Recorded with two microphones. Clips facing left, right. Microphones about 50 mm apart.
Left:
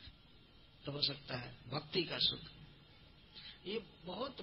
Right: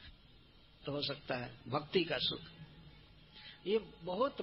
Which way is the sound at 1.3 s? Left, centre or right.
Centre.